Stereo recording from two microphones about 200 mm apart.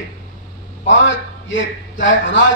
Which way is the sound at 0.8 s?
70° left (ahead or behind).